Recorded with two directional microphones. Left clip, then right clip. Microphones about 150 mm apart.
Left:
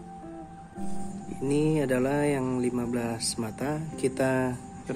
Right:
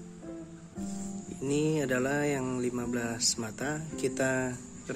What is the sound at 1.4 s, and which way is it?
Speech, 10° right (ahead or behind).